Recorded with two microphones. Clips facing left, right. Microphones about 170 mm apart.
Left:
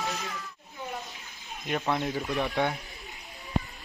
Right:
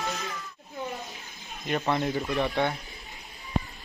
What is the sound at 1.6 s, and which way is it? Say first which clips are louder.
Speech: right 2 dB; centre (ahead or behind).